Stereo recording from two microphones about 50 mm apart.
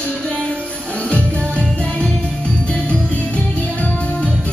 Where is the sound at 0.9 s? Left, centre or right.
Left.